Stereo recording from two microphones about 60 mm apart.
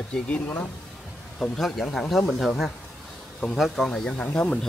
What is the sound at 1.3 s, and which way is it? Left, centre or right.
Speech, centre.